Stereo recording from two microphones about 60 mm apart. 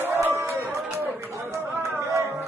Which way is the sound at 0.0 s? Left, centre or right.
Right.